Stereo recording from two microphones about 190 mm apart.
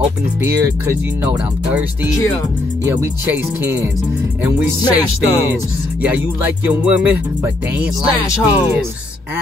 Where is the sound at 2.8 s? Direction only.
10° right (ahead or behind).